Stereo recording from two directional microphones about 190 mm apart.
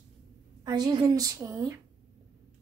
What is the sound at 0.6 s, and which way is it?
A woman's voice, 20° right (ahead or behind).